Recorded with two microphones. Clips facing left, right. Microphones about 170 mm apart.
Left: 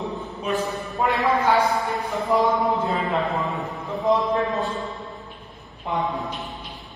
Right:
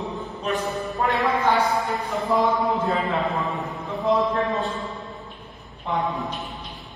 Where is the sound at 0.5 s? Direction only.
20° right (ahead or behind).